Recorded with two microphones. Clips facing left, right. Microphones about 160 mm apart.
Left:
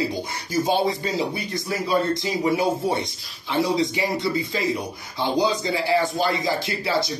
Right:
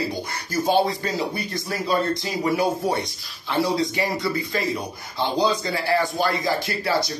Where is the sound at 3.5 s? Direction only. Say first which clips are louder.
Left 1 dB; 20° left (ahead or behind).